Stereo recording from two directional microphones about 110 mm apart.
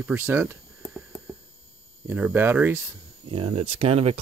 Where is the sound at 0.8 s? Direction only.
Centre (ahead or behind).